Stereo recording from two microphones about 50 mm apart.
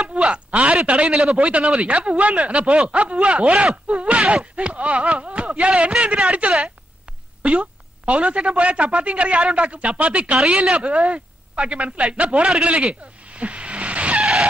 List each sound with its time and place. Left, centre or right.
0.0 s a sound: right
0.8 s a woman's voice: right
12.6 s vehicle: right
14.2 s vehicle: centre